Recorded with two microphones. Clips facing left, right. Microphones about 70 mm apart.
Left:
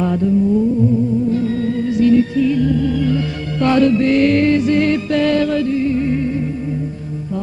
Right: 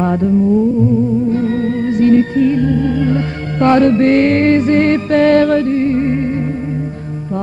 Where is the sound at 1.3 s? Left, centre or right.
Right.